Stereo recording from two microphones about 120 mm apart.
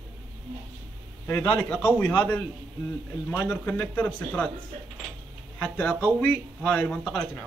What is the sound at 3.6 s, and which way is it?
Speech, 15° left (ahead or behind).